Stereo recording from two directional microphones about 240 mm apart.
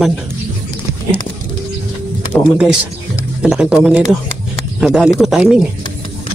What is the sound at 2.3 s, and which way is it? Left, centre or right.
Speech, centre.